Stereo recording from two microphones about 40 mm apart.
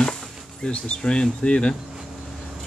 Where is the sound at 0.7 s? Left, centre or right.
Left.